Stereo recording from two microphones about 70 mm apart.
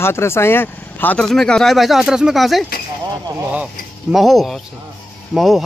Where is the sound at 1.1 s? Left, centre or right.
Centre.